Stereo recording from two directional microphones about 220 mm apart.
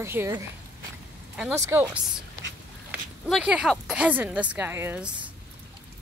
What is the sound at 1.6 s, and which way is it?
Speech, 10° right (ahead or behind).